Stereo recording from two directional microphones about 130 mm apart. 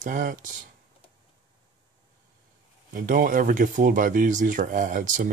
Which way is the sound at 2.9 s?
90° right.